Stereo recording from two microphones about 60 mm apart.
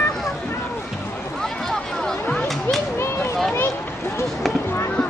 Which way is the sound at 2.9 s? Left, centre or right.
Left.